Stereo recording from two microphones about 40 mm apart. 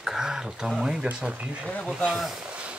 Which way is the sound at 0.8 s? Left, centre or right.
Right.